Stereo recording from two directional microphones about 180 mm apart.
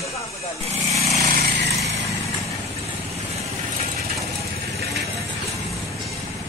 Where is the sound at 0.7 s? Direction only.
35° right (ahead or behind).